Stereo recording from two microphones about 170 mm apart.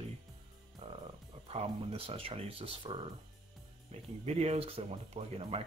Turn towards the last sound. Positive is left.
turn(degrees=-35)  # may be behind; listen again after turning